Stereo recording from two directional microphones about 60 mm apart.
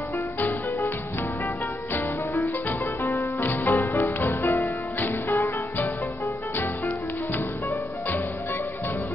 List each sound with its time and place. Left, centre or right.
0.4 s music: left
3.0 s music: left